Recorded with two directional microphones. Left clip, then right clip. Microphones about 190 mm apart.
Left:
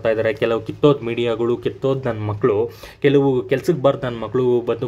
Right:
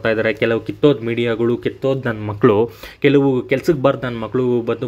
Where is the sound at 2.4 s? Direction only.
35° right (ahead or behind).